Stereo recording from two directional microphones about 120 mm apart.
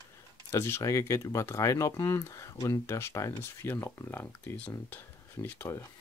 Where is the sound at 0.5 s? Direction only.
25° left (ahead or behind).